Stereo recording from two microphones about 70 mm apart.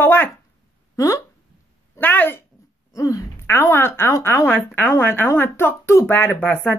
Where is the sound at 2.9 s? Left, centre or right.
Left.